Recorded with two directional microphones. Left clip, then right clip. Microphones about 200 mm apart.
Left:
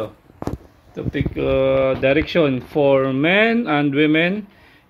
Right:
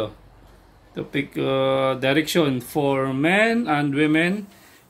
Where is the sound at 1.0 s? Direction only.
25° left (ahead or behind).